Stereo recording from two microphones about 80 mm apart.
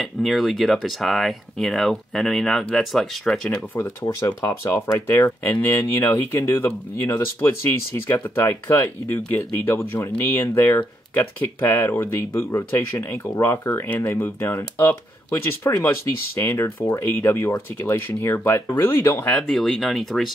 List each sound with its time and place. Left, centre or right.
0.0 s speech: centre
3.7 s speech: left
5.4 s speech: left
19.4 s speech: centre